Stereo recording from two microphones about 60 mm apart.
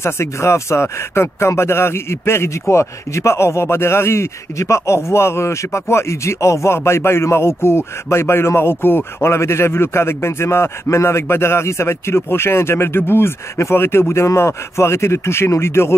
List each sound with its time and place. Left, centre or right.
0.0 s speech: left